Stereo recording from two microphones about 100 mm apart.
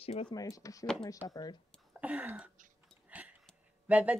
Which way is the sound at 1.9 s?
15° right (ahead or behind).